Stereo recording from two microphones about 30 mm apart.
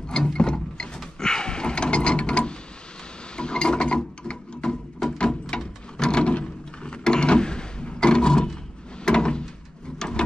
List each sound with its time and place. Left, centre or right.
0.2 s mechanisms: left
0.9 s a sound: left
9.0 s door: left
9.9 s drawer open or close: left